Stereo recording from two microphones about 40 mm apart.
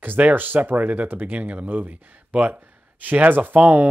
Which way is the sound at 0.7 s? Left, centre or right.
Right.